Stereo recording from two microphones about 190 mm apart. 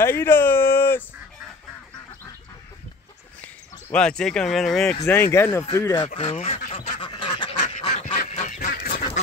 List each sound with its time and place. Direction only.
0.0 s speech: 10° left (ahead or behind)
3.9 s speech: 5° left (ahead or behind)
5.0 s speech: 15° left (ahead or behind)
6.0 s speech: 30° left (ahead or behind)
6.7 s duck: 35° left (ahead or behind)
7.6 s goose: 40° left (ahead or behind)
8.6 s duck: 55° left (ahead or behind)